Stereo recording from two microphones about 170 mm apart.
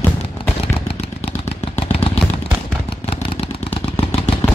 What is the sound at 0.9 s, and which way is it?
Vehicle, 35° left (ahead or behind).